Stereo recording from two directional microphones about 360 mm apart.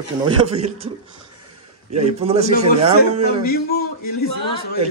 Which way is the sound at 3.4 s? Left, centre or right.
Left.